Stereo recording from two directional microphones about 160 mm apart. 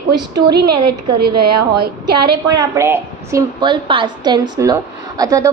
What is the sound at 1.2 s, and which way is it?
Speech, 80° right.